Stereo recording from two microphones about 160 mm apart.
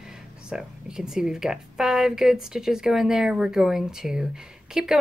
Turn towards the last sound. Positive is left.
turn(degrees=-5)  # may be behind; listen again after turning